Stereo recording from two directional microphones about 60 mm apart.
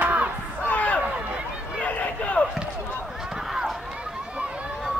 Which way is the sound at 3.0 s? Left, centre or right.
Centre.